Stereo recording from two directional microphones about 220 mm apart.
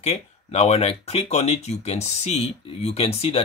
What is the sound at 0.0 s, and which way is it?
Speech, 30° left (ahead or behind).